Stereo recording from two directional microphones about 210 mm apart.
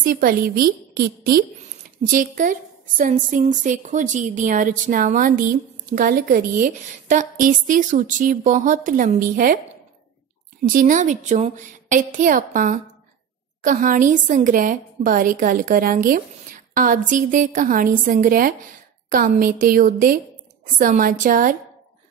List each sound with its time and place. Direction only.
0.0 s a woman's voice: 45° right (ahead or behind)
10.7 s a woman's voice: 40° right (ahead or behind)